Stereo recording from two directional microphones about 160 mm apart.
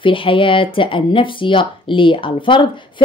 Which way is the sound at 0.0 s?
35° left (ahead or behind).